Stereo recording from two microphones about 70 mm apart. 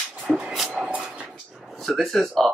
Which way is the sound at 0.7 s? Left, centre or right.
Centre.